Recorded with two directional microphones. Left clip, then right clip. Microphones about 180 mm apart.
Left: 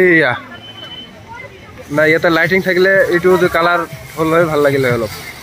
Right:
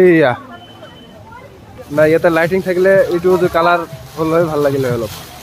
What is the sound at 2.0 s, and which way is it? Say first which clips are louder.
Speech: even; centre (ahead or behind).